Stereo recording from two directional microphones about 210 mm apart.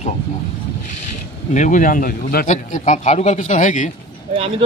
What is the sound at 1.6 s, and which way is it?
A man's voice, 35° left (ahead or behind).